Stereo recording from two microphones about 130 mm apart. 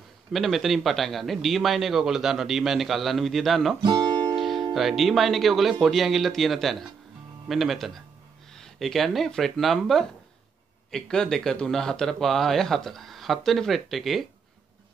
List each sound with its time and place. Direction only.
0.3 s a man's voice: centre (ahead or behind)
3.8 s music: 35° right (ahead or behind)
4.4 s music: centre (ahead or behind)
4.7 s a man's voice: centre (ahead or behind)